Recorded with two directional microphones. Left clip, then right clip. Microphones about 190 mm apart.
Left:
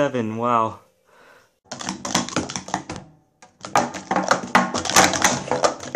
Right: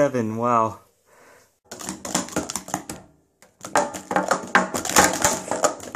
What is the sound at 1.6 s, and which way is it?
Typewriter, 15° right (ahead or behind).